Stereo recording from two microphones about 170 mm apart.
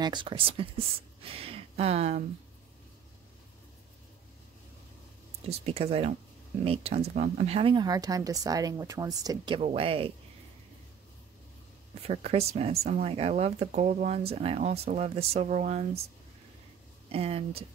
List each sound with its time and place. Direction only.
0.0 s speech: 25° right (ahead or behind)
5.5 s speech: 35° right (ahead or behind); by 9.6 s 20° right (ahead or behind)
9.6 s speech: 35° right (ahead or behind)
12.0 s speech: 35° right (ahead or behind)
17.1 s speech: 35° right (ahead or behind)